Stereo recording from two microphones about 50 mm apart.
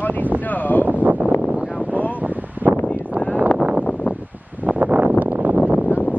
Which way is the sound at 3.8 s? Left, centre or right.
Left.